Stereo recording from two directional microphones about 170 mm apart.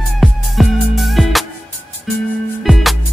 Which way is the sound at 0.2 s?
Centre (ahead or behind).